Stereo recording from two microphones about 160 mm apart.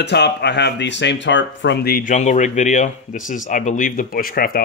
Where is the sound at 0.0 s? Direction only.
90° left.